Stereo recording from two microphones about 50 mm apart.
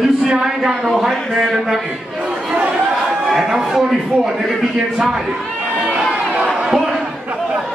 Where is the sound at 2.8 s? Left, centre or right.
Centre.